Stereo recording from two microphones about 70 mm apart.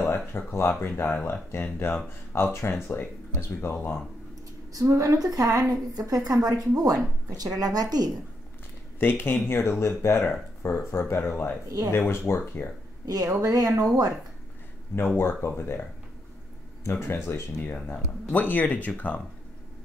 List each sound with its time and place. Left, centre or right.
0.0 s a sound: left
0.5 s speech: left
3.7 s speech: left
4.7 s a woman's voice: right
9.0 s speech: left
9.8 s speech: left
13.0 s a woman's voice: right
15.1 s speech: left
16.9 s speech: left